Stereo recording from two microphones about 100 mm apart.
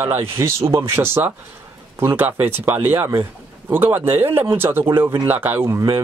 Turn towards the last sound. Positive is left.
turn(degrees=-20)  # may be behind; listen again after turning